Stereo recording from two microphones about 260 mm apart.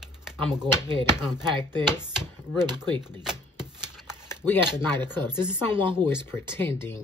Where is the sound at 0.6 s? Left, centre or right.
Centre.